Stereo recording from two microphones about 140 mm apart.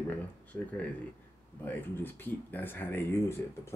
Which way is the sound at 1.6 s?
15° left (ahead or behind).